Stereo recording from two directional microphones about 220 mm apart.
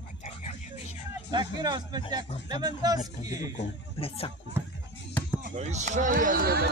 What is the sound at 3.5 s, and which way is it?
Speech, 25° left (ahead or behind).